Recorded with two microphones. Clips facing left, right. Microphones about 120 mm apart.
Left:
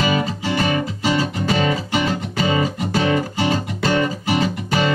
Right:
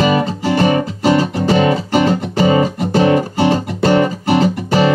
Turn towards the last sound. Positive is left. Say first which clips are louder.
# right 6 dB
turn(degrees=-40)  # may be behind; listen again after turning